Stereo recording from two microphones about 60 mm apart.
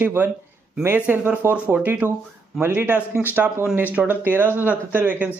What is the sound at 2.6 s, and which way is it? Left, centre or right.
Speech, right.